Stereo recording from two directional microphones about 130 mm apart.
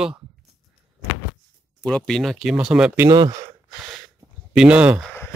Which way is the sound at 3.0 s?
30° right (ahead or behind).